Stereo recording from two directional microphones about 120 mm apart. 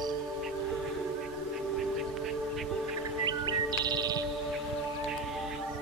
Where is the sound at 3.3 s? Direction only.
35° right (ahead or behind).